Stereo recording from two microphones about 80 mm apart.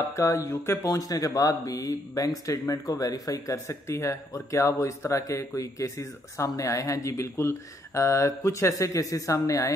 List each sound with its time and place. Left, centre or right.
0.1 s speech: left